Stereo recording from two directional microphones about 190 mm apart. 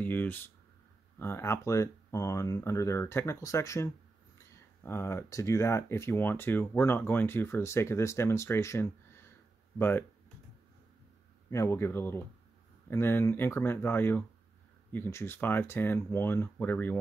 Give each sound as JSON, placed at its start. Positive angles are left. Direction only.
{"t": 0.0, "sound": "speech", "side_deg": 10}
{"t": 11.5, "sound": "speech", "side_deg": 15}